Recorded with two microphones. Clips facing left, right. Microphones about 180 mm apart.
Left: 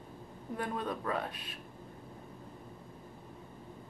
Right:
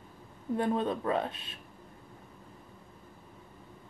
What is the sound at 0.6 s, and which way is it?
A woman's voice, 25° right (ahead or behind).